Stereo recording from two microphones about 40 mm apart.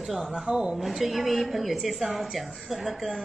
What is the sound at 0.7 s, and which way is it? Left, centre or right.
A woman's voice, centre.